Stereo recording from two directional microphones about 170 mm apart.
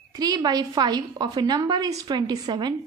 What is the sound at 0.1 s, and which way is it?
A woman's voice, 20° right (ahead or behind).